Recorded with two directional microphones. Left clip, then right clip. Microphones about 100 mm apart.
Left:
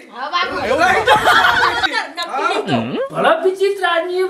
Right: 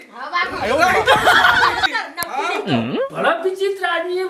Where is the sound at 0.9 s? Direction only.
Centre (ahead or behind).